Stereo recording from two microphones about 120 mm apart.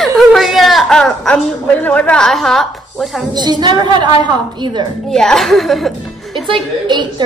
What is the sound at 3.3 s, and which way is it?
A woman's voice, 35° right (ahead or behind).